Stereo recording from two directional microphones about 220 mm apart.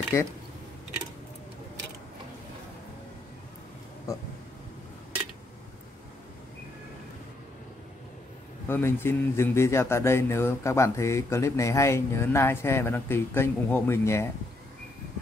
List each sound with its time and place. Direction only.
0.1 s speech: 10° left (ahead or behind)
8.6 s speech: 10° left (ahead or behind)